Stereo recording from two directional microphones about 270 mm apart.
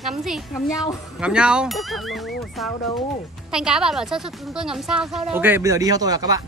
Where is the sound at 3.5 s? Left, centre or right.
Centre.